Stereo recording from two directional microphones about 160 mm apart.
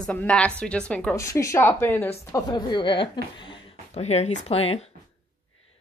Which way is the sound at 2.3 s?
25° left (ahead or behind).